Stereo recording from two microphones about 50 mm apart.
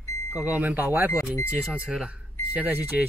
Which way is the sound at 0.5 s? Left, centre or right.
Right.